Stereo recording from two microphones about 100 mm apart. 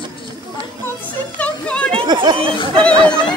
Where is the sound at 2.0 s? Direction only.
45° right (ahead or behind).